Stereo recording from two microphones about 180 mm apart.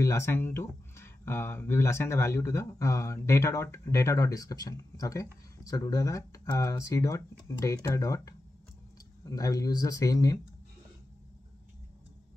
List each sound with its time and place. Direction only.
0.0 s speech: 15° left (ahead or behind)